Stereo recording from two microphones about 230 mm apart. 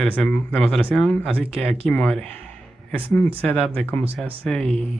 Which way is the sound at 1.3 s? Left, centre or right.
Right.